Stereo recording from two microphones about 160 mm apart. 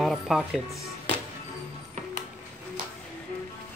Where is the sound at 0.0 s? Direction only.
Centre (ahead or behind).